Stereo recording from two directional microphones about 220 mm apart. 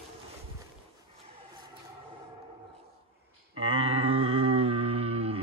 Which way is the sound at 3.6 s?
25° right (ahead or behind).